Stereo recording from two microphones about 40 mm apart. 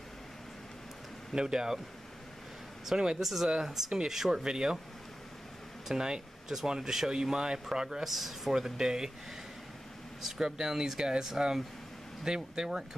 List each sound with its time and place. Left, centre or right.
1.3 s speech: centre
3.2 s speech: centre
5.9 s speech: centre
8.0 s speech: centre
10.2 s speech: centre